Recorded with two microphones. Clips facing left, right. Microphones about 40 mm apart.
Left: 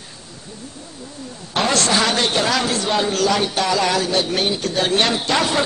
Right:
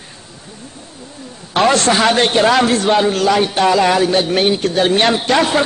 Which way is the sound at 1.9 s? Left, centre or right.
Right.